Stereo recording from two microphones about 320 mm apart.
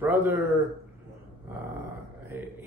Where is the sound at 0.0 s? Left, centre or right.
Centre.